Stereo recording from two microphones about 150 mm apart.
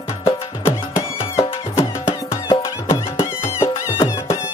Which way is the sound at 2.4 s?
35° left (ahead or behind).